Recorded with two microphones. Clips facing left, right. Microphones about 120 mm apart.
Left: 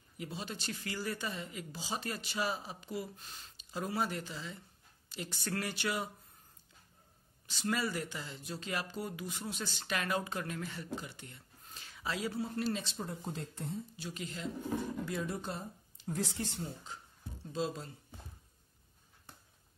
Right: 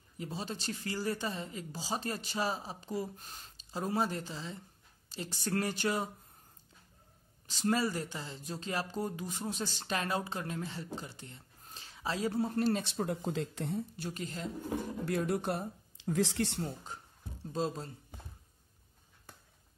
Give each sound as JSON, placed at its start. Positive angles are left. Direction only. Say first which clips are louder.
{"t": 0.2, "sound": "speech", "louder": "right 3 dB", "side_deg": -35}
{"t": 7.4, "sound": "speech", "louder": "right 4 dB", "side_deg": -35}
{"t": 12.4, "sound": "speech", "louder": "right 5 dB", "side_deg": -45}
{"t": 15.0, "sound": "speech", "louder": "right 6 dB", "side_deg": -65}
{"t": 16.5, "sound": "speech", "louder": "right 4 dB", "side_deg": -50}